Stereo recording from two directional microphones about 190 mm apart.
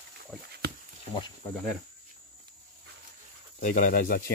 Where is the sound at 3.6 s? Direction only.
45° left (ahead or behind).